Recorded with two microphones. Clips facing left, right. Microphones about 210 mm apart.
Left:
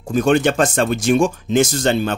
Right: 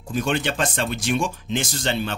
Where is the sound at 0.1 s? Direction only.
45° left (ahead or behind).